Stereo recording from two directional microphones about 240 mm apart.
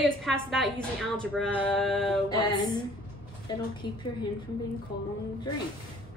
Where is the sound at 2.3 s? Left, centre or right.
Centre.